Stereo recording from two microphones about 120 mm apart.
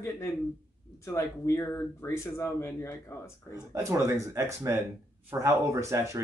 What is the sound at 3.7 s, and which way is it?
Speech, 25° right (ahead or behind).